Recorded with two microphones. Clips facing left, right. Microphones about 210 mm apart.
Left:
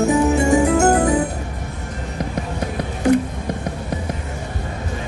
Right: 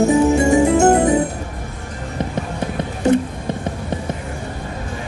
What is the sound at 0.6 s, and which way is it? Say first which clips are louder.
Music: right 2 dB; 25° right (ahead or behind).